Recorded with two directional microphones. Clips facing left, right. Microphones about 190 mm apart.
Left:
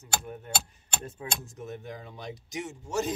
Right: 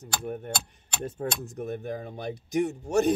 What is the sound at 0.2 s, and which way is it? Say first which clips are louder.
Speech: right 4 dB; 55° right (ahead or behind).